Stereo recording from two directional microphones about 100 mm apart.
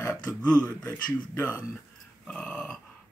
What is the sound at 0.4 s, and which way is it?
Speech, 15° left (ahead or behind).